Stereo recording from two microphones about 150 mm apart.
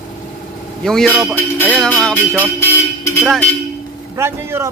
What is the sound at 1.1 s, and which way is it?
Speech, 10° right (ahead or behind).